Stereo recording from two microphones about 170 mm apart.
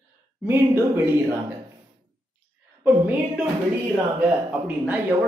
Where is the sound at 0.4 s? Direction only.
15° right (ahead or behind).